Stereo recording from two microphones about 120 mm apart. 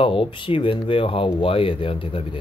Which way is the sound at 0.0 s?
45° left (ahead or behind).